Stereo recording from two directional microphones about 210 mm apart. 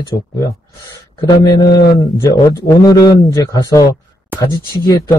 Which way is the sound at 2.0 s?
15° left (ahead or behind).